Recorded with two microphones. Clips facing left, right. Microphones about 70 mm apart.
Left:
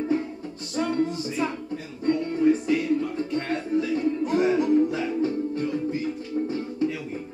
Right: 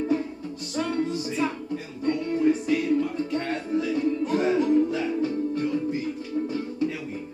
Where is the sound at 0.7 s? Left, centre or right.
Left.